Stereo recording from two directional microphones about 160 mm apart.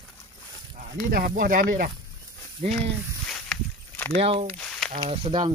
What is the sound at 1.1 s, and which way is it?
Speech, 60° right (ahead or behind).